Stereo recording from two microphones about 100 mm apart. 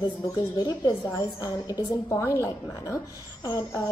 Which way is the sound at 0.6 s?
45° left (ahead or behind).